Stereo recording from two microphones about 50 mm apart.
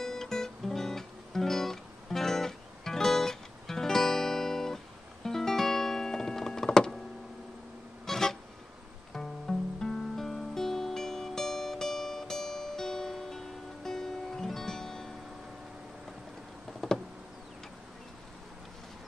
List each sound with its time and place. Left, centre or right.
0.0 s music: centre
8.1 s music: centre